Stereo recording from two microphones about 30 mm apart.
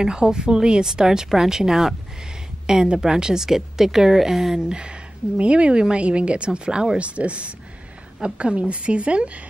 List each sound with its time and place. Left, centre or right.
0.0 s a woman's voice: right
4.6 s a woman's voice: right
7.0 s a woman's voice: right